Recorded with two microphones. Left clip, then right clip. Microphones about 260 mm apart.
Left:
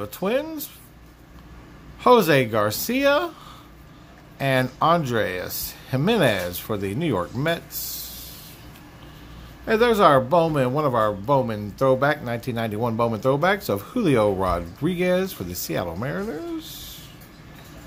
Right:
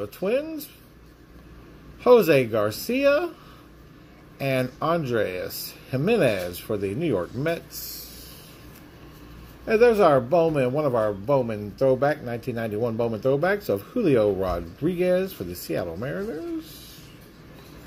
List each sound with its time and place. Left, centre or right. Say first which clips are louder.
2.0 s speech: even; centre
4.4 s speech: left 4 dB; centre
9.7 s speech: left 1 dB; centre